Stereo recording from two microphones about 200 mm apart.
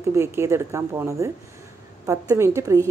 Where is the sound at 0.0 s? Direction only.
15° right (ahead or behind).